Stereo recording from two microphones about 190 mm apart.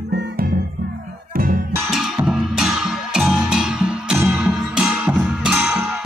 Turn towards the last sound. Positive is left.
turn(degrees=-5)  # may be behind; listen again after turning